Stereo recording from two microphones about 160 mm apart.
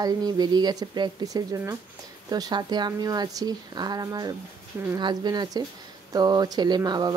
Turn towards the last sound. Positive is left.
turn(degrees=-25)  # may be behind; listen again after turning